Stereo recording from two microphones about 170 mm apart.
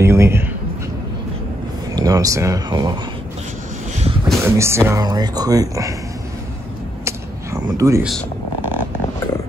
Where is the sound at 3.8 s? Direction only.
35° right (ahead or behind).